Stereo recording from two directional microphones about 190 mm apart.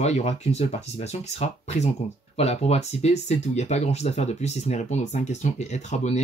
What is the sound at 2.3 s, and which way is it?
Speech, 35° left (ahead or behind).